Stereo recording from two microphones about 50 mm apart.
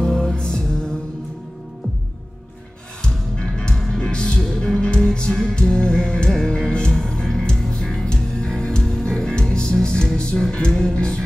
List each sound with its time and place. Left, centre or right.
0.0 s music: centre
3.0 s music: centre
3.7 s music: centre
4.0 s music: centre
5.3 s music: centre
5.6 s music: centre